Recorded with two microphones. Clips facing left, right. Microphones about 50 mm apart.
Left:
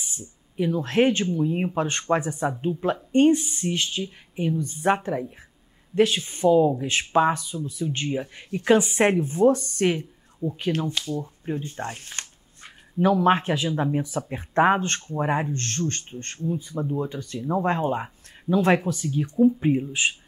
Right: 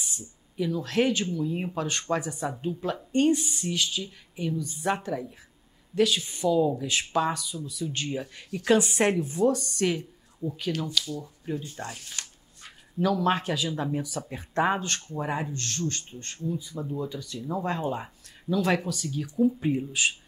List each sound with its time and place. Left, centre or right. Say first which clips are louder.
0.2 s speech: left 5 dB; left